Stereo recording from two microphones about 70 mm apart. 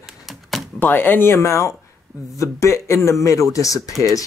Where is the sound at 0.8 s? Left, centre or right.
Left.